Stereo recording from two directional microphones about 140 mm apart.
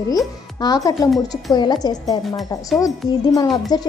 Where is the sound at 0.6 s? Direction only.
30° left (ahead or behind).